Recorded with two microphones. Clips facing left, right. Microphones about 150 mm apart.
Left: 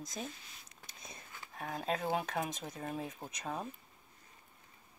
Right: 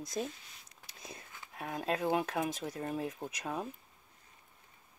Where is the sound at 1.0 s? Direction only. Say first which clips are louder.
Right 2 dB; 5° right (ahead or behind).